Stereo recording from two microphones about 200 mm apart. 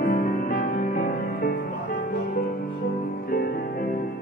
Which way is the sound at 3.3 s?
50° left (ahead or behind).